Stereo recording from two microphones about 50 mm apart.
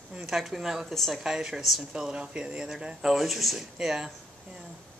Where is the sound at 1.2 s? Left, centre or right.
Centre.